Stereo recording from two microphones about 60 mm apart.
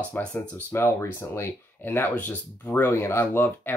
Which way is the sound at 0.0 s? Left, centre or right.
Left.